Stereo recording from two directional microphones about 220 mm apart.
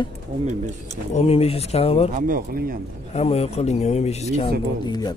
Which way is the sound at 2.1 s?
40° right (ahead or behind).